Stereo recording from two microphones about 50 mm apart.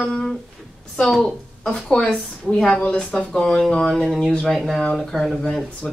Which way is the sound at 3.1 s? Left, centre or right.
Centre.